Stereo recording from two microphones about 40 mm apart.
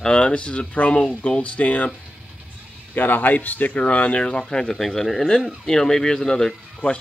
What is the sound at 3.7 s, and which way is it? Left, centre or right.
Speech, left.